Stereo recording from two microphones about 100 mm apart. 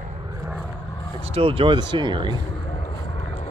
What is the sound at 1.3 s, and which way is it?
Speech, 65° right (ahead or behind).